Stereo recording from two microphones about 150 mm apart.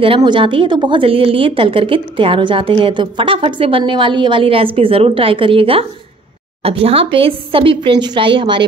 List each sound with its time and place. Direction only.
0.0 s a woman's voice: 35° right (ahead or behind)